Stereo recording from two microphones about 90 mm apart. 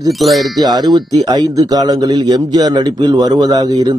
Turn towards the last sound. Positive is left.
turn(degrees=-45)  # may be behind; listen again after turning